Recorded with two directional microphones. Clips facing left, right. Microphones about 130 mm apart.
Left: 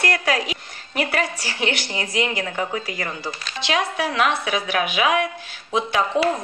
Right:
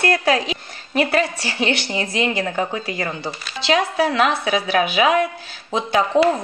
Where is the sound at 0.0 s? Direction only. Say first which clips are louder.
Right 4 dB; 30° right (ahead or behind).